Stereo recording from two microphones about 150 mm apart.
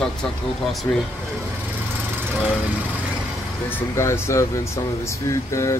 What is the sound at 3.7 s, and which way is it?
Speech, 15° left (ahead or behind).